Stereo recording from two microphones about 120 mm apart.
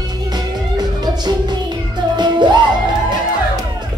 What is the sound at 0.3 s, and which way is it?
Music, 35° right (ahead or behind).